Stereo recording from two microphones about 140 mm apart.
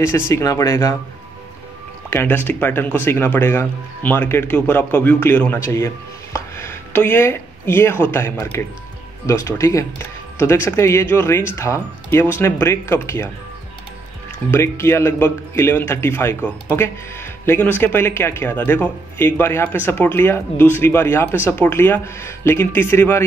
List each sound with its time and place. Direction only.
0.3 s speech: 20° left (ahead or behind)
2.0 s speech: 15° left (ahead or behind)
14.5 s speech: 20° left (ahead or behind)